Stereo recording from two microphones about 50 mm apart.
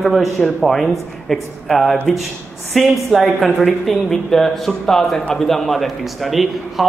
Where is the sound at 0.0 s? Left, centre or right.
Centre.